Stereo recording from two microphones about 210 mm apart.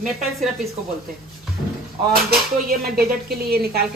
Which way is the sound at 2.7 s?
45° right (ahead or behind).